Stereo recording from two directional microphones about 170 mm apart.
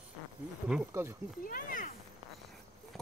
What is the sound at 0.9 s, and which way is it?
Speech, 15° right (ahead or behind).